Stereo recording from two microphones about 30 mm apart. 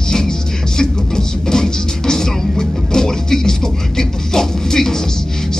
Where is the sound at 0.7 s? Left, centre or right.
Left.